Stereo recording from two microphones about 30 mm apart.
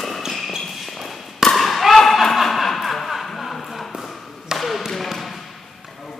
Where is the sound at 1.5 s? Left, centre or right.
Centre.